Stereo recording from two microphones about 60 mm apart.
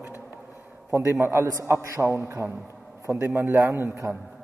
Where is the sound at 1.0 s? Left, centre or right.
Right.